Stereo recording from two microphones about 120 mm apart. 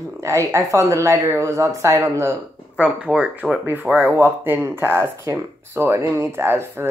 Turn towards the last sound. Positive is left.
turn(degrees=-20)  # may be behind; listen again after turning